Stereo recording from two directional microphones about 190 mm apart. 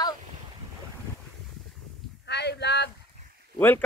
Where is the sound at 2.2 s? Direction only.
65° left (ahead or behind).